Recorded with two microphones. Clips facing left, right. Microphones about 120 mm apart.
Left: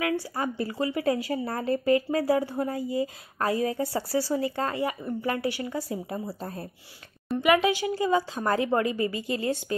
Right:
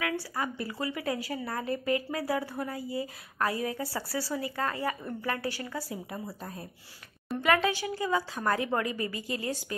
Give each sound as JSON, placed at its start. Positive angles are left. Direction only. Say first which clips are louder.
{"t": 0.0, "sound": "a woman's voice", "louder": "left 4 dB", "side_deg": 25}
{"t": 7.4, "sound": "a woman's voice", "louder": "left 4 dB", "side_deg": 15}